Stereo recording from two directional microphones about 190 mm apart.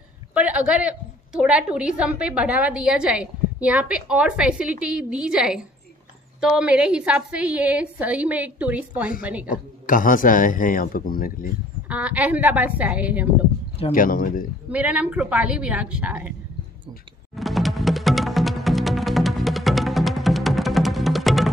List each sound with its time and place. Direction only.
0.3 s a woman's voice: 5° right (ahead or behind)
9.5 s speech: 45° left (ahead or behind)
11.9 s a woman's voice: 5° right (ahead or behind)
13.9 s speech: 45° left (ahead or behind)
14.7 s a woman's voice: 5° right (ahead or behind)
17.4 s music: centre (ahead or behind)